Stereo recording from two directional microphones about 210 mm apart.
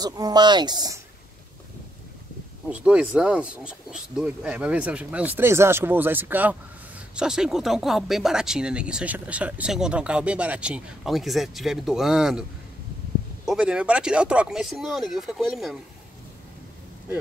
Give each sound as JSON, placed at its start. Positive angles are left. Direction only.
{"t": 0.0, "sound": "speech", "side_deg": -20}
{"t": 2.7, "sound": "speech", "side_deg": -5}
{"t": 13.5, "sound": "speech", "side_deg": -5}